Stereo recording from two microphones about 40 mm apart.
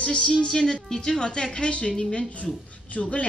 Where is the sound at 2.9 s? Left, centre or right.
Left.